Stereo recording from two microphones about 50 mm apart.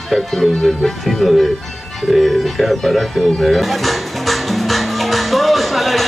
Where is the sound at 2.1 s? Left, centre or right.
Centre.